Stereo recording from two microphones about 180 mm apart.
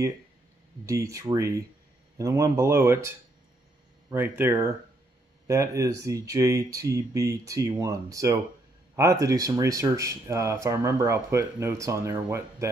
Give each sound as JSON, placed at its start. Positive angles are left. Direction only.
{"t": 0.8, "sound": "speech", "side_deg": -15}
{"t": 4.1, "sound": "speech", "side_deg": -10}